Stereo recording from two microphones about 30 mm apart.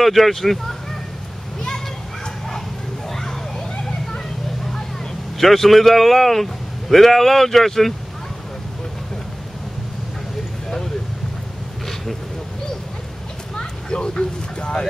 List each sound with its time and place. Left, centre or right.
0.0 s speech: centre
3.1 s vehicle: centre
5.4 s speech: centre
13.6 s a sound: left